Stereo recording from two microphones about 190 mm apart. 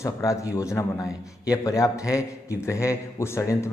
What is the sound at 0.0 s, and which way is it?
A man's voice, 15° left (ahead or behind).